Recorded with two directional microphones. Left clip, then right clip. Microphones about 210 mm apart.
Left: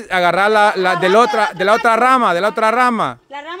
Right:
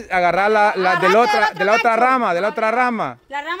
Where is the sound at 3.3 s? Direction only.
55° right (ahead or behind).